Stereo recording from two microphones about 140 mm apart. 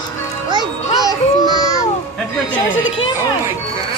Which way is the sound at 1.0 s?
30° right (ahead or behind).